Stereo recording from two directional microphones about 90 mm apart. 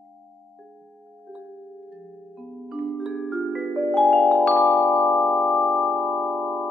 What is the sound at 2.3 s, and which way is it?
Music, 5° right (ahead or behind).